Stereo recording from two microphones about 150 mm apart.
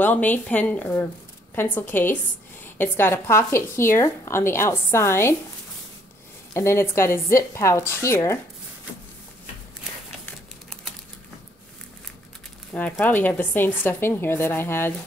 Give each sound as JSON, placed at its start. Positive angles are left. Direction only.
{"t": 0.0, "sound": "speech", "side_deg": 10}
{"t": 6.5, "sound": "speech", "side_deg": 20}
{"t": 13.0, "sound": "speech", "side_deg": 10}